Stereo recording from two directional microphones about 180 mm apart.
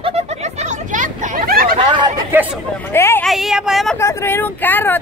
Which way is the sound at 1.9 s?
25° right (ahead or behind).